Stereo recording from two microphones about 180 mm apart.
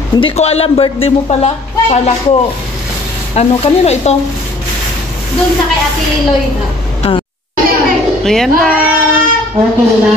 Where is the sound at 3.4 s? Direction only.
35° left (ahead or behind).